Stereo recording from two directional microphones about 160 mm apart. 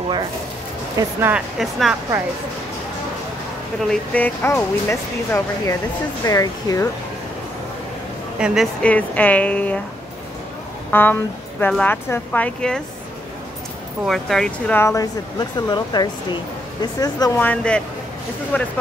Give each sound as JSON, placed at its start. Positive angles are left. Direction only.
{"t": 1.3, "sound": "speech", "side_deg": 0}
{"t": 3.9, "sound": "speech", "side_deg": 10}
{"t": 8.4, "sound": "speech", "side_deg": -5}
{"t": 8.8, "sound": "speech", "side_deg": 10}
{"t": 10.9, "sound": "a woman's voice", "side_deg": 10}
{"t": 14.0, "sound": "speech", "side_deg": 0}
{"t": 14.8, "sound": "speech", "side_deg": 20}
{"t": 17.4, "sound": "speech", "side_deg": 10}